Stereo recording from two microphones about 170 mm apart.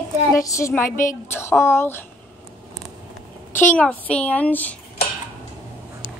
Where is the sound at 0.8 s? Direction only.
50° left (ahead or behind).